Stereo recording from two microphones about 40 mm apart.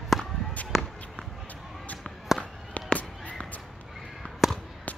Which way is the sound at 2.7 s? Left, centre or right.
Left.